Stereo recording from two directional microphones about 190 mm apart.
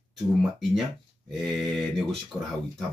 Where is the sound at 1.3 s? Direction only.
Centre (ahead or behind).